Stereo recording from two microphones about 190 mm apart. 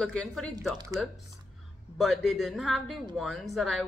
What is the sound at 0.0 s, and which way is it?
Speech, 5° left (ahead or behind).